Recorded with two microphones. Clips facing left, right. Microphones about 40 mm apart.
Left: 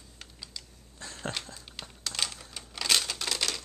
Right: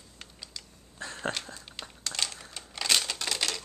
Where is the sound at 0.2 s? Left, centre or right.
Centre.